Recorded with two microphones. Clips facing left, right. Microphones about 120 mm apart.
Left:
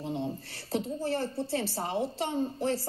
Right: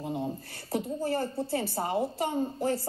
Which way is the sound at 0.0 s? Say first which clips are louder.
Right 1 dB; 10° right (ahead or behind).